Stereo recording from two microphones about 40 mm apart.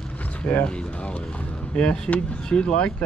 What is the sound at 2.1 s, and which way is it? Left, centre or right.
Speech, left.